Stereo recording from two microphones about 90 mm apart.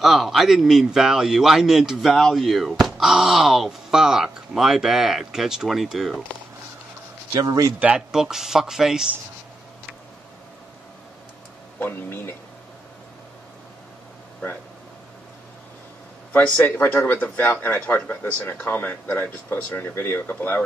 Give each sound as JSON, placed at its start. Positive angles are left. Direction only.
{"t": 0.0, "sound": "a man's voice", "side_deg": 0}
{"t": 7.3, "sound": "a man's voice", "side_deg": -40}
{"t": 7.8, "sound": "a man's voice", "side_deg": -10}
{"t": 11.8, "sound": "speech", "side_deg": 25}
{"t": 16.3, "sound": "speech", "side_deg": 20}